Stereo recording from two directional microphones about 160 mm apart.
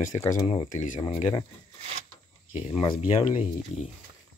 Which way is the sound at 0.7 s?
55° left (ahead or behind).